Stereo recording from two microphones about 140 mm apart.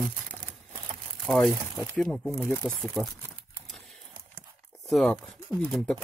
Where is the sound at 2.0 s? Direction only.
Centre (ahead or behind).